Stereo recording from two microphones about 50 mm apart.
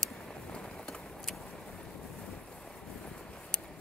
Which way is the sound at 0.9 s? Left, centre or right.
Centre.